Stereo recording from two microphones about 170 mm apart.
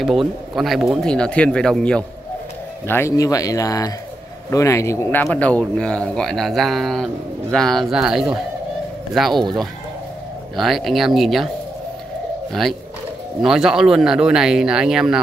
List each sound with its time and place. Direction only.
0.0 s speech: centre (ahead or behind)
2.9 s speech: 15° left (ahead or behind); by 9.5 s centre (ahead or behind)
10.5 s speech: centre (ahead or behind)
13.4 s speech: 5° right (ahead or behind)